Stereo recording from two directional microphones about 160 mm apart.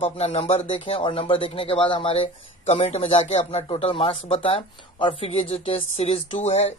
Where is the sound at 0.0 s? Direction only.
40° left (ahead or behind).